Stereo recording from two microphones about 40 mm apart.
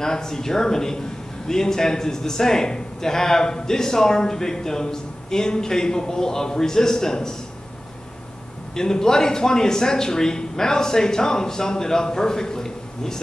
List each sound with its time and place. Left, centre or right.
0.0 s a man's voice: centre
8.7 s a man's voice: centre